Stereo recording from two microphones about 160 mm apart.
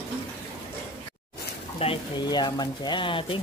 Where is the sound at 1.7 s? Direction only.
30° left (ahead or behind).